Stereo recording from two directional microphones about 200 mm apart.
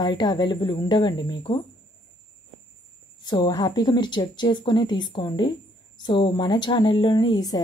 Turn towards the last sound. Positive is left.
turn(degrees=20)  # may be behind; listen again after turning